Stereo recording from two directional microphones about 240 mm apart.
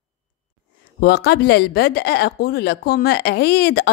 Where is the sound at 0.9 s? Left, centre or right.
Left.